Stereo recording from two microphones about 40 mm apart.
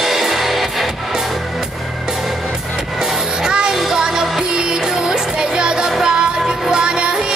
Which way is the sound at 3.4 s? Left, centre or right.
Right.